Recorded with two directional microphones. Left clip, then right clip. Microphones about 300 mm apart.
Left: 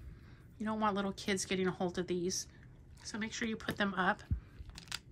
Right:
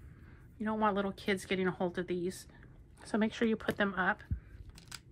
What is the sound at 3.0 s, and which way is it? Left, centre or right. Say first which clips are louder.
Speech: right 7 dB; centre.